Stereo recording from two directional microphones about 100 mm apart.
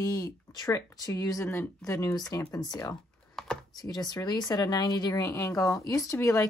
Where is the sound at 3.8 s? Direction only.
40° left (ahead or behind).